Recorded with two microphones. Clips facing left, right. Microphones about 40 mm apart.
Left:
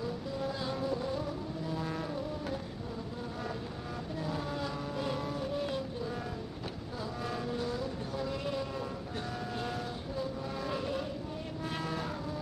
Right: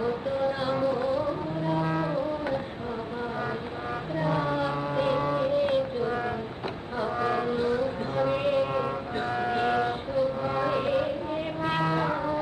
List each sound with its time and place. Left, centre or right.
0.0 s music: right
4.2 s vehicle: right
11.6 s a sound: right